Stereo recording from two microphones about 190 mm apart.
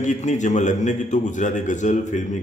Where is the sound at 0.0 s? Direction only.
40° left (ahead or behind).